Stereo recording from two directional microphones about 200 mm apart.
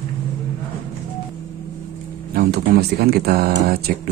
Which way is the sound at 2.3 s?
50° right (ahead or behind).